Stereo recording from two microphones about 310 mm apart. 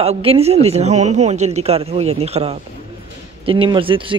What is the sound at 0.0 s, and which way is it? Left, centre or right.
A woman's voice, centre.